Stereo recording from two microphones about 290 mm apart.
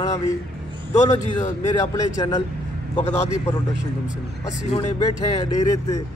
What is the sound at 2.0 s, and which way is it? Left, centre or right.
Speech, centre.